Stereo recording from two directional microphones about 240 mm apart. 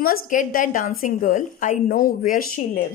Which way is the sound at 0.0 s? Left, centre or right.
Left.